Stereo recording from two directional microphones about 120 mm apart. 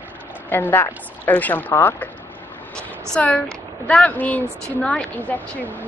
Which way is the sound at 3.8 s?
10° left (ahead or behind).